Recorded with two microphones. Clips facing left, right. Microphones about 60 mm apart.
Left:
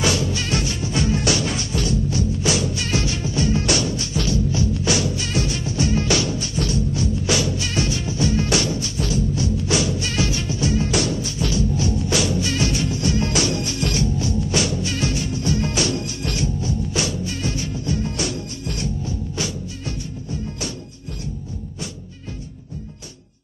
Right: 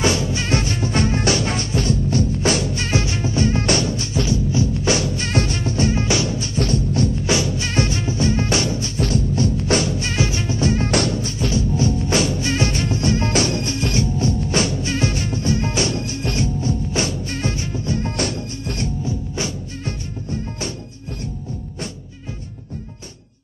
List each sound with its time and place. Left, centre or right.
0.0 s music: right
5.9 s music: right
6.6 s music: right
7.2 s music: right
11.3 s music: right
18.0 s music: right
19.0 s music: right